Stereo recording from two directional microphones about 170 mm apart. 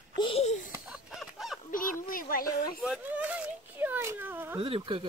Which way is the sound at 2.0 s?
55° left (ahead or behind).